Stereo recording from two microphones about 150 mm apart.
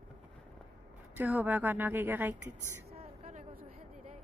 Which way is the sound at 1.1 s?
10° right (ahead or behind).